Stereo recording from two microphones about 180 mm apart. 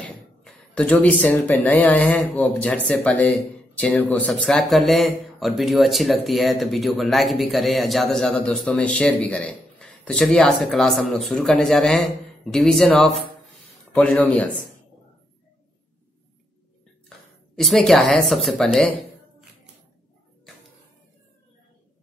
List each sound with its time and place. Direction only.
0.0 s speech: 5° left (ahead or behind)
17.6 s speech: centre (ahead or behind)